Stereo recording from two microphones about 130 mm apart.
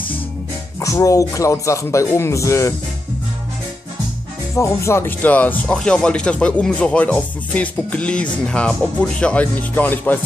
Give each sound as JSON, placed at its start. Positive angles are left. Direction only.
{"t": 0.7, "sound": "speech", "side_deg": 25}
{"t": 4.6, "sound": "speech", "side_deg": 20}